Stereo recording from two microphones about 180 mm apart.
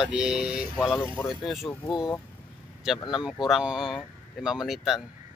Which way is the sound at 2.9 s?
Centre (ahead or behind).